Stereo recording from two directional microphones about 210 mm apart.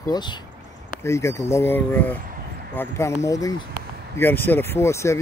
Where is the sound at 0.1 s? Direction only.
20° left (ahead or behind).